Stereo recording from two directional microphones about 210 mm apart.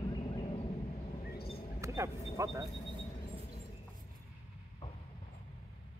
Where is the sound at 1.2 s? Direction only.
45° left (ahead or behind).